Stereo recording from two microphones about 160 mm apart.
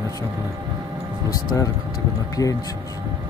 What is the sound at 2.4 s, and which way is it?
Speech, 20° left (ahead or behind).